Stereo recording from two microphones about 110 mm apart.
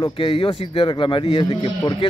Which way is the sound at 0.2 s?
50° left (ahead or behind).